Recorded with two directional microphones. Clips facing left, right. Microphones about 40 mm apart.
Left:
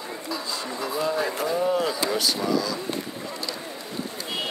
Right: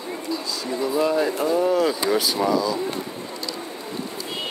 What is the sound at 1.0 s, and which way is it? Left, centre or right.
Speech, right.